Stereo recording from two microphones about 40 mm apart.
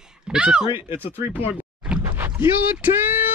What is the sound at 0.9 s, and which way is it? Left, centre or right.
Speech, right.